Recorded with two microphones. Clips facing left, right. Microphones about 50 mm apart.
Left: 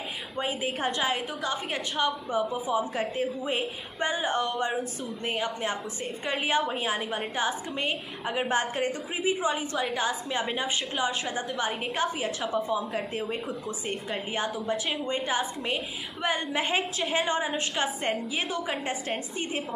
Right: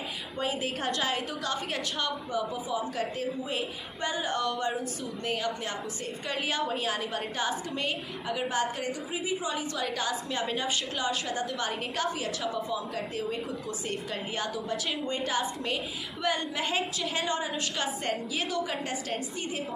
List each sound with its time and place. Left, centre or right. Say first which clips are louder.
0.4 s a woman's voice: left 2 dB; centre
7.7 s a woman's voice: left 1 dB; left